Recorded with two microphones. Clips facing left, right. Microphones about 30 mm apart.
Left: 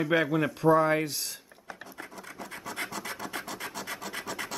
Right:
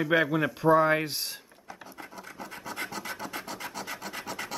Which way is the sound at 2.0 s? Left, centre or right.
Centre.